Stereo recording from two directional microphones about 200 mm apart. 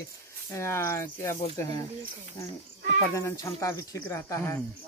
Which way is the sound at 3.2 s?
15° left (ahead or behind).